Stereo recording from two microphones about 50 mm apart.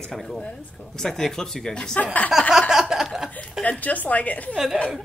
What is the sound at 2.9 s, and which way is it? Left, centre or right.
Chuckle, centre.